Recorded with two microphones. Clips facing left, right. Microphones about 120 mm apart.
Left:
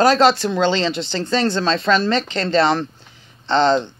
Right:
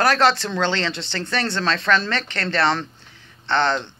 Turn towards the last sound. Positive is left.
turn(degrees=15)  # may be behind; listen again after turning